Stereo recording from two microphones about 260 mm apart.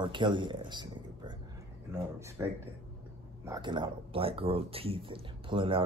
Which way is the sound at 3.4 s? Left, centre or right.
Centre.